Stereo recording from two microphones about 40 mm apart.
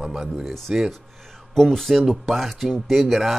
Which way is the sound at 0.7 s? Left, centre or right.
Centre.